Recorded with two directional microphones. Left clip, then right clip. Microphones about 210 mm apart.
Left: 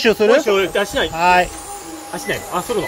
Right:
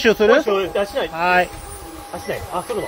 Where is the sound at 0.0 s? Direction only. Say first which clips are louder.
Left 1 dB; centre (ahead or behind).